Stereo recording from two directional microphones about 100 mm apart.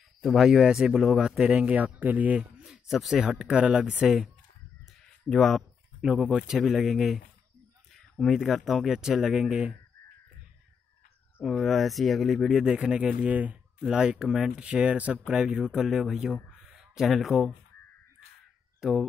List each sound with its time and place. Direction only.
0.2 s speech: centre (ahead or behind)
2.5 s speech: 5° right (ahead or behind)
11.4 s speech: centre (ahead or behind)
16.5 s a sound: 5° right (ahead or behind)
18.8 s speech: 5° right (ahead or behind)